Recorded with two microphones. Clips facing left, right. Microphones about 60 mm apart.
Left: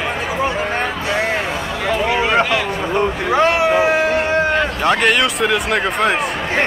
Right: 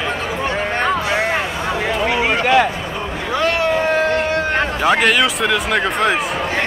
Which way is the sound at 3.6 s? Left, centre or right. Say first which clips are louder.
Left 2 dB; centre.